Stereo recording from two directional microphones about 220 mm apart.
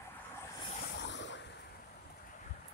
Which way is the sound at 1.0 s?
55° left (ahead or behind).